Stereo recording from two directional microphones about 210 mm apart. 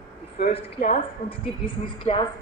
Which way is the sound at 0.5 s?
30° left (ahead or behind).